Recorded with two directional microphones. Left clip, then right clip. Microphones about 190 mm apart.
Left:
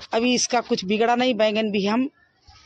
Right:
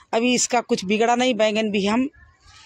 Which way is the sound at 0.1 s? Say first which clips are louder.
Right 1 dB; 5° right (ahead or behind).